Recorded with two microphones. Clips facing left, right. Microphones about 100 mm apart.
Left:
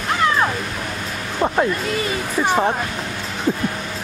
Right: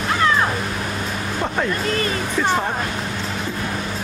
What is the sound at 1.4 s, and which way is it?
Speech, 20° left (ahead or behind).